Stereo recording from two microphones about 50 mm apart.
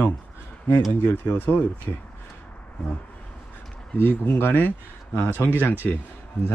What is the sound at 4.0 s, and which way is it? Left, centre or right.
Speech, left.